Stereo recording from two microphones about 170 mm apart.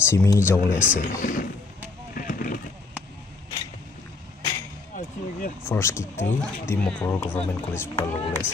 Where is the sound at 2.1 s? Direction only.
55° left (ahead or behind).